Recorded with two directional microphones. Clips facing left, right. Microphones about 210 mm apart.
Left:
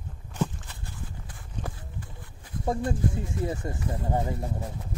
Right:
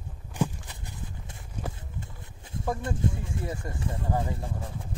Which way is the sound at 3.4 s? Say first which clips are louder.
Left 4 dB; 25° left (ahead or behind).